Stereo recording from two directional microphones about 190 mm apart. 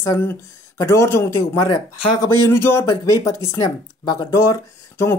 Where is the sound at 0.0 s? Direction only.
15° left (ahead or behind).